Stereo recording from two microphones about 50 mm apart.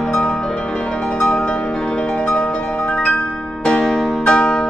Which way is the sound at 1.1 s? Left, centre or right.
Centre.